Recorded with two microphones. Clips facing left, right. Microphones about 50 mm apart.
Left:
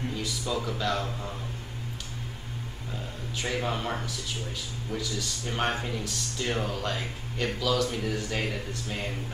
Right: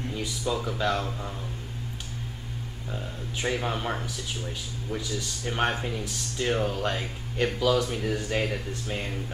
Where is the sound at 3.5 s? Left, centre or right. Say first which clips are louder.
Left 2 dB; centre.